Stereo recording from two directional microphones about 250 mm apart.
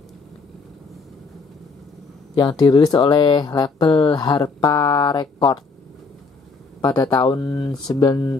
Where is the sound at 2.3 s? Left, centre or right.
Centre.